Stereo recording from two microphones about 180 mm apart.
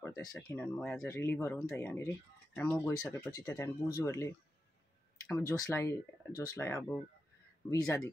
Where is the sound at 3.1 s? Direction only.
15° left (ahead or behind).